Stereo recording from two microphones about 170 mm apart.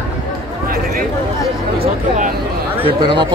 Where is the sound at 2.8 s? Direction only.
30° right (ahead or behind).